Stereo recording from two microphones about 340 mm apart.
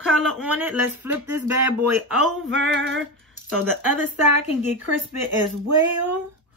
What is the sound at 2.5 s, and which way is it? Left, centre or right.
Female singing, right.